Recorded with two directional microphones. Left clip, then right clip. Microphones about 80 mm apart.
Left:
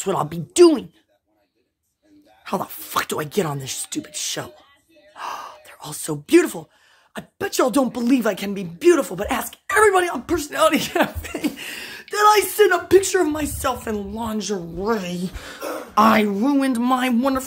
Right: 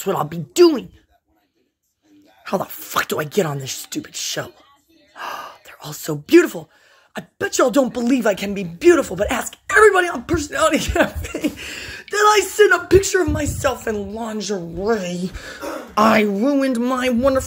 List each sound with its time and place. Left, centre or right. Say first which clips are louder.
0.0 s speech: right 1 dB; left
2.4 s speech: right 3 dB; left
9.4 s a sound: right 2 dB; centre
9.8 s speech: right 3 dB; left
10.9 s speech: right 2 dB; left
11.5 s a sound: right 1 dB; centre
12.4 s speech: right 3 dB; left
13.0 s speech: right 1 dB; left
13.3 s speech: right 2 dB; left
14.8 s speech: right 3 dB; left
15.9 s speech: right 1 dB; centre